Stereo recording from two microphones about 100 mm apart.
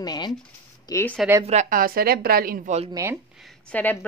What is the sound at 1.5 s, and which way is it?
Speech, 90° right.